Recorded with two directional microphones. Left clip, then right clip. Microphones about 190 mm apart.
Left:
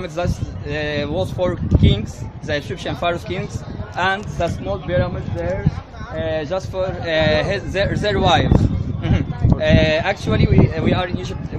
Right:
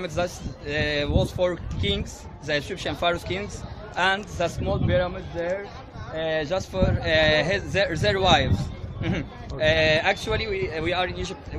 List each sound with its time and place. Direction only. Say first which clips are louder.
0.0 s speech: left 3 dB; 5° left (ahead or behind)